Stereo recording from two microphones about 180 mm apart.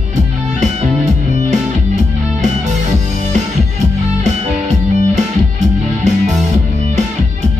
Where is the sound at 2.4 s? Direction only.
40° right (ahead or behind).